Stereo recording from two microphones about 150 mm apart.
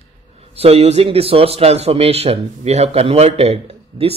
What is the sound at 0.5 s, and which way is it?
A man's voice, 40° right (ahead or behind).